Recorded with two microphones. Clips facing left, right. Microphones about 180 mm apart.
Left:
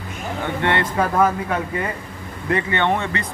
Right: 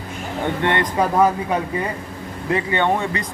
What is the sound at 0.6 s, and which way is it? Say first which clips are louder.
Speech: even; 20° right (ahead or behind).